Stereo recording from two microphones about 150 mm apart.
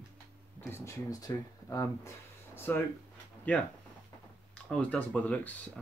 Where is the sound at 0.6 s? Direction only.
20° left (ahead or behind).